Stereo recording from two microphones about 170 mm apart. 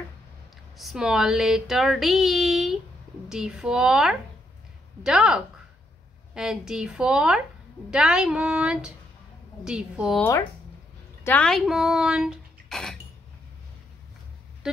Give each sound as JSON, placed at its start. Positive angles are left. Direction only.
{"t": 0.7, "sound": "speech", "side_deg": -5}
{"t": 11.2, "sound": "speech", "side_deg": 5}